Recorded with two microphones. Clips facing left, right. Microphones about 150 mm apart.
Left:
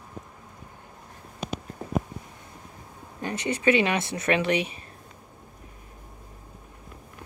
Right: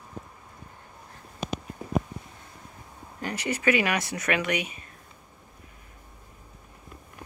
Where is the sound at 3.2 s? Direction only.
20° left (ahead or behind).